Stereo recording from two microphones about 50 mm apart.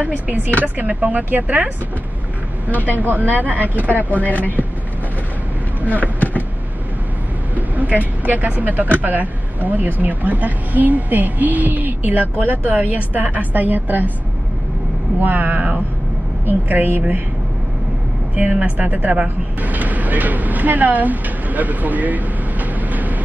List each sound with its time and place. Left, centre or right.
0.0 s speech: right
2.7 s speech: left
3.0 s speech: right
4.2 s speech: left
7.5 s speech: right
15.2 s speech: right
18.3 s speech: right